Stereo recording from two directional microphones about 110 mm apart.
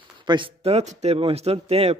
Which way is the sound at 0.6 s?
70° right (ahead or behind).